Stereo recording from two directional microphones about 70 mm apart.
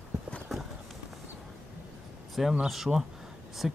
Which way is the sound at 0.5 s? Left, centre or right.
Centre.